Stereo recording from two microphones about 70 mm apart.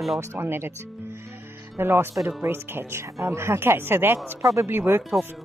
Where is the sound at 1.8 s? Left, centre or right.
Right.